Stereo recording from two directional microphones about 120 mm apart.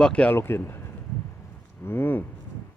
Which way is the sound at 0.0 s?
10° left (ahead or behind).